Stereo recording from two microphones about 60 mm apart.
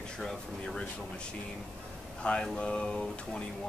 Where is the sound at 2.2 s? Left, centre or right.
Centre.